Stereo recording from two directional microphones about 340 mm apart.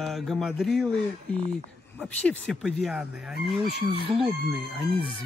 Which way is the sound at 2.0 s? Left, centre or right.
Centre.